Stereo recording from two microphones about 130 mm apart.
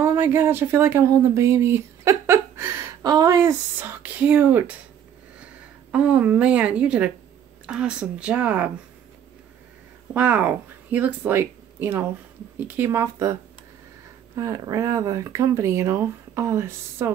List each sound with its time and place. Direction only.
0.0 s a sound: 15° right (ahead or behind)
3.0 s speech: 30° right (ahead or behind); by 4.7 s 15° right (ahead or behind)
5.9 s speech: 10° right (ahead or behind)
10.1 s speech: 15° right (ahead or behind)